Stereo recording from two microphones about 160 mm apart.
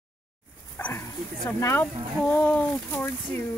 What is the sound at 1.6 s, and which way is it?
Speech, 15° left (ahead or behind).